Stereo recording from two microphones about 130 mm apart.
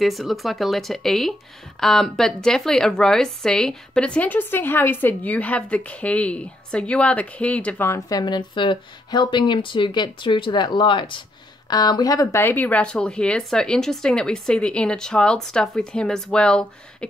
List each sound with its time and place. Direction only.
0.0 s a woman's voice: centre (ahead or behind)
8.1 s a woman's voice: 35° left (ahead or behind); by 16.6 s 5° left (ahead or behind)